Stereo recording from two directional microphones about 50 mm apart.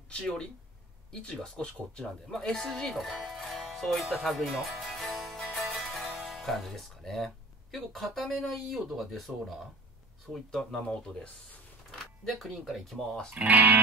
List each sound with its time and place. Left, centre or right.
0.1 s speech: centre
2.3 s music: centre
8.3 s speech: centre
10.6 s speech: centre
11.9 s speech: centre
12.9 s speech: centre
13.3 s speech: right